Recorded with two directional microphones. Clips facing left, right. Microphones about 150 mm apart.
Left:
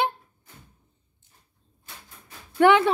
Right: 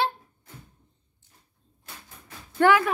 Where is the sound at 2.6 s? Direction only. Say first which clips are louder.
Left 2 dB; 25° left (ahead or behind).